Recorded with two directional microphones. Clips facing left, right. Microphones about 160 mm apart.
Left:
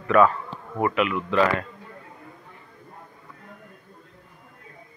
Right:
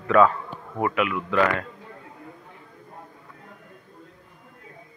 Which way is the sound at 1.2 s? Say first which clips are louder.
Left 1 dB; 20° left (ahead or behind).